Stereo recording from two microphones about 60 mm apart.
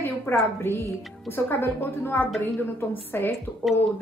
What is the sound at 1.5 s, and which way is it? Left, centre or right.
A woman's voice, left.